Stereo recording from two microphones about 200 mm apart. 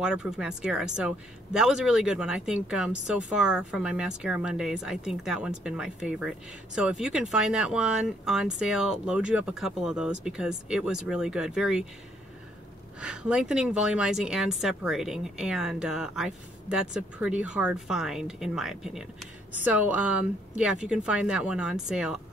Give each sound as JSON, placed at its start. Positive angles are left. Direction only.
{"t": 0.0, "sound": "speech", "side_deg": -5}
{"t": 13.0, "sound": "speech", "side_deg": -5}